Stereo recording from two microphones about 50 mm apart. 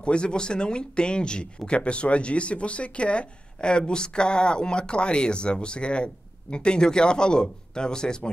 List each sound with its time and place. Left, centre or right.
0.0 s a man's voice: centre